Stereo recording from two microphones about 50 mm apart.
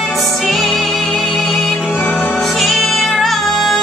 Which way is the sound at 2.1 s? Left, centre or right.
Left.